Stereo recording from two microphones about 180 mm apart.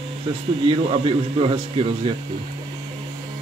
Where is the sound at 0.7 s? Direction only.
30° right (ahead or behind).